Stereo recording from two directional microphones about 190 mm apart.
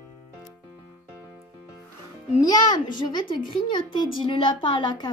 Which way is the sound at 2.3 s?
20° left (ahead or behind).